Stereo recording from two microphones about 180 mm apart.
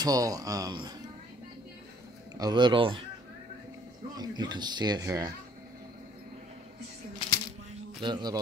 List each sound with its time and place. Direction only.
0.0 s speech: 20° right (ahead or behind)
2.3 s speech: 25° right (ahead or behind)
4.1 s speech: 25° right (ahead or behind)
8.0 s speech: 25° right (ahead or behind)